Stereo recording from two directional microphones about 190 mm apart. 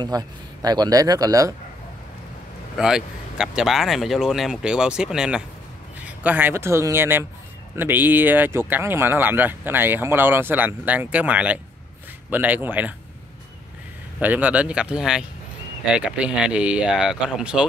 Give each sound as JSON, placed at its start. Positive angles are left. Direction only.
{"t": 0.0, "sound": "speech", "side_deg": -20}
{"t": 2.8, "sound": "speech", "side_deg": -5}
{"t": 14.2, "sound": "speech", "side_deg": -10}